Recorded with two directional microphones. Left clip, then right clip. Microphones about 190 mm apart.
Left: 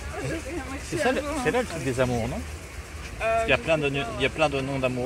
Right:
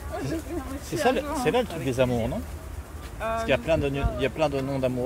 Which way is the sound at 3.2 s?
50° right (ahead or behind).